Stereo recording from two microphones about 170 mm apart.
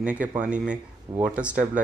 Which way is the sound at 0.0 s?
10° right (ahead or behind).